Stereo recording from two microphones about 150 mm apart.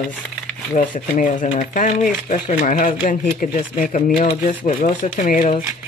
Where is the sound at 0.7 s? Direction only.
60° left (ahead or behind).